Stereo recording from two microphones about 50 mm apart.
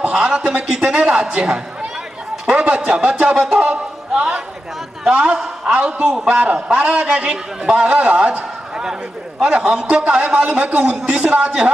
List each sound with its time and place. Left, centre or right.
0.0 s a man's voice: right